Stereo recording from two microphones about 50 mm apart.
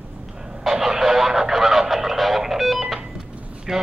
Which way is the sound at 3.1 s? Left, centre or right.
Centre.